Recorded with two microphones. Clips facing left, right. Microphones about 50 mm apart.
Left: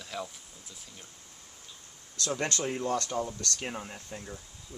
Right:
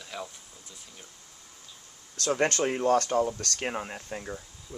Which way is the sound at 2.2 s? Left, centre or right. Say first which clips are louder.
Right 6 dB; right.